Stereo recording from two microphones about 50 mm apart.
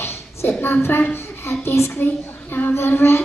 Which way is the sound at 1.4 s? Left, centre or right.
Left.